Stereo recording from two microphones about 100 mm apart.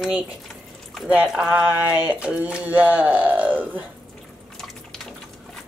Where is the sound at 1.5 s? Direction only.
15° right (ahead or behind).